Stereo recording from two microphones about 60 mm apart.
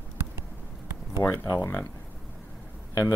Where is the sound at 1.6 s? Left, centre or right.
Left.